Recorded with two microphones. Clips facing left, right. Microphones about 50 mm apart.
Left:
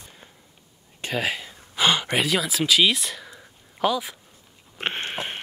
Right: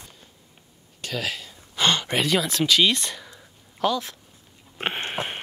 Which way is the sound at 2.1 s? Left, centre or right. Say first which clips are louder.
Right 1 dB; centre.